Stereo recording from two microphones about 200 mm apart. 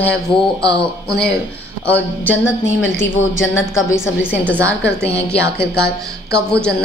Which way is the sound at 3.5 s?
10° left (ahead or behind).